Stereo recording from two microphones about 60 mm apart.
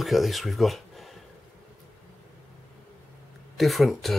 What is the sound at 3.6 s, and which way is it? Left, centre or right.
Speech, centre.